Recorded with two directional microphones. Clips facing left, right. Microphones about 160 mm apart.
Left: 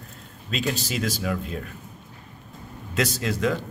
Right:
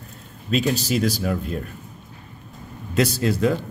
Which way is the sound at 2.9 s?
40° right (ahead or behind).